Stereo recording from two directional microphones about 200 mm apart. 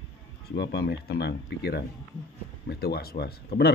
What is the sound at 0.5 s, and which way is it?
A man's voice, 55° left (ahead or behind).